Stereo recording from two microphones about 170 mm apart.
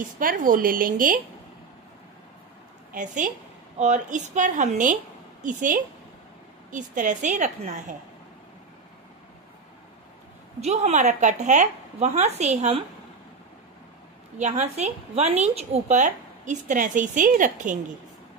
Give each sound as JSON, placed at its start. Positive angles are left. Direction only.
{"t": 0.2, "sound": "a woman's voice", "side_deg": -55}
{"t": 2.9, "sound": "a woman's voice", "side_deg": -50}
{"t": 10.6, "sound": "a woman's voice", "side_deg": -40}
{"t": 14.4, "sound": "a woman's voice", "side_deg": -45}